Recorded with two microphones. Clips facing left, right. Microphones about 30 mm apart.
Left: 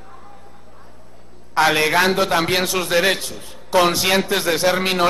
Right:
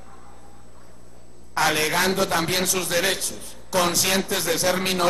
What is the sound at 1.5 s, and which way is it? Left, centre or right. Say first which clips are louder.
A man's voice: left 5 dB; left.